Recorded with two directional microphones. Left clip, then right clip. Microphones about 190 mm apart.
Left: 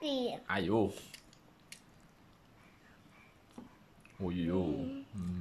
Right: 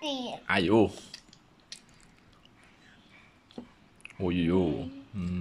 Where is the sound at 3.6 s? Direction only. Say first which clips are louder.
Right 7 dB; 35° right (ahead or behind).